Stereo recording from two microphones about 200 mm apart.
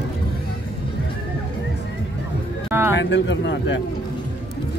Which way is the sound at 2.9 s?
65° left (ahead or behind).